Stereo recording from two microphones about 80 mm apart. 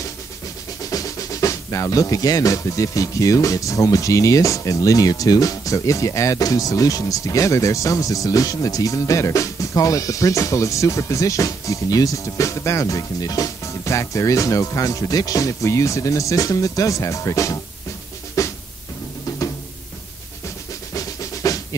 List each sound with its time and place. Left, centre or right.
0.8 s speech: left
18.4 s music: left
20.9 s drum: left